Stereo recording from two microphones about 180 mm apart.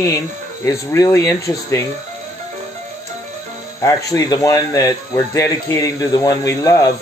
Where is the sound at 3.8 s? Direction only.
20° left (ahead or behind).